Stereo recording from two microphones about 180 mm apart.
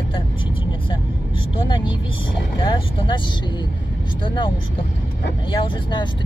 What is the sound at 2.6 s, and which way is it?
Speech, 25° left (ahead or behind).